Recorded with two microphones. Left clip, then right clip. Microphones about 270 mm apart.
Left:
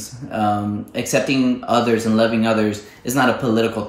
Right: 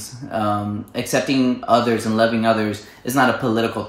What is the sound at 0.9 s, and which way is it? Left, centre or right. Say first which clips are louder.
Speech: left 1 dB; centre.